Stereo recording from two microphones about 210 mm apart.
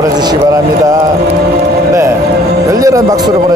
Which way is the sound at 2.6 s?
15° right (ahead or behind).